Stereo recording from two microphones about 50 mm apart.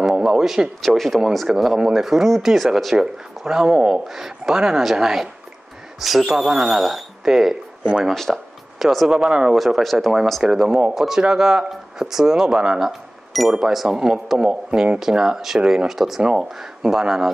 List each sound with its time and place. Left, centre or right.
0.0 s a sound: centre
0.8 s speech: centre
3.0 s speech: centre
8.0 s speech: centre
8.7 s speech: centre
9.6 s speech: centre
10.4 s speech: centre
16.2 s speech: centre